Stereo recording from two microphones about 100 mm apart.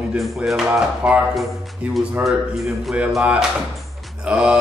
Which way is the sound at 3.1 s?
10° right (ahead or behind).